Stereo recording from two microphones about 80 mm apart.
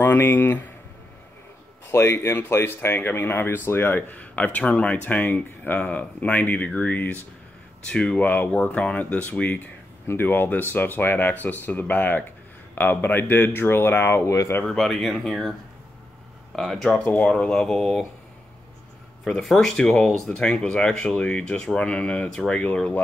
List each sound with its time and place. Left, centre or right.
0.0 s speech: left
1.9 s speech: left
14.6 s speech: centre
16.5 s speech: centre
17.0 s speech: centre
17.6 s speech: centre
19.2 s speech: centre